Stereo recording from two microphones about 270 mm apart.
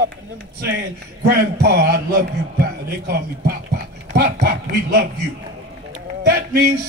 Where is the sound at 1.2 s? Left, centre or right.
Right.